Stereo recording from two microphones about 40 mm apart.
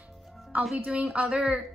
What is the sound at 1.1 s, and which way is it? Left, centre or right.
Speech, right.